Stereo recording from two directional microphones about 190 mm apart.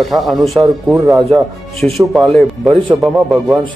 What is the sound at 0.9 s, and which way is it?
Speech, 15° right (ahead or behind).